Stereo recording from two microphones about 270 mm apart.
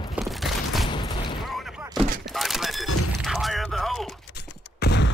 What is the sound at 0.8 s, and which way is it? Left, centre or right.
Fusillade, centre.